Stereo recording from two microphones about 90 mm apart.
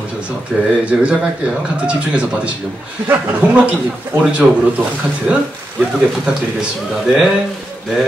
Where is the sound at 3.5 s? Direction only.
10° right (ahead or behind).